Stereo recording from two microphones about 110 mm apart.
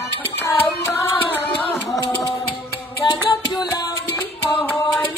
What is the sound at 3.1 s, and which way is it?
Music, 40° left (ahead or behind).